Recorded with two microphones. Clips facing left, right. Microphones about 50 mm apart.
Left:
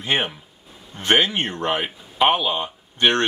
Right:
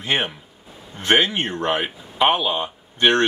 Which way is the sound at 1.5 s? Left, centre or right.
Centre.